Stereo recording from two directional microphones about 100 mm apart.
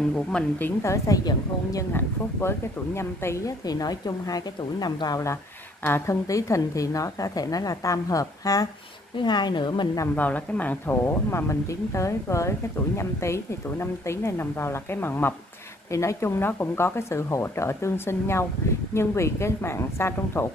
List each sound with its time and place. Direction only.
0.1 s a woman's voice: 10° left (ahead or behind)
0.9 s a woman's voice: 35° left (ahead or behind)
2.0 s speech: 25° left (ahead or behind)
3.6 s a woman's voice: 40° left (ahead or behind)
9.1 s speech: 50° left (ahead or behind)
10.1 s speech: 15° left (ahead or behind)